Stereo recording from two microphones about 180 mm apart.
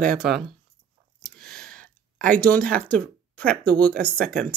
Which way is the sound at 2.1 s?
50° right (ahead or behind).